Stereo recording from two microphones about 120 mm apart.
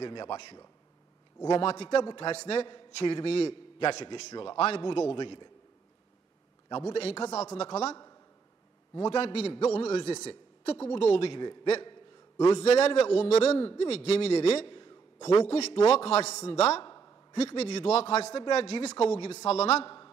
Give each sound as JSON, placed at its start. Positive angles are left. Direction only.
{"t": 0.0, "sound": "a man's voice", "side_deg": 40}
{"t": 2.3, "sound": "a man's voice", "side_deg": 60}
{"t": 6.9, "sound": "a man's voice", "side_deg": 55}
{"t": 7.9, "sound": "a sound", "side_deg": 30}
{"t": 9.1, "sound": "a man's voice", "side_deg": 55}
{"t": 11.8, "sound": "a sound", "side_deg": 40}
{"t": 12.4, "sound": "a man's voice", "side_deg": 60}
{"t": 15.2, "sound": "a man's voice", "side_deg": 55}
{"t": 16.8, "sound": "a sound", "side_deg": 30}
{"t": 17.6, "sound": "a man's voice", "side_deg": 60}
{"t": 19.8, "sound": "a man's voice", "side_deg": 35}